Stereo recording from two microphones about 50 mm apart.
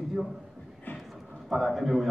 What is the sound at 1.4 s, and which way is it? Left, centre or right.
Speech, centre.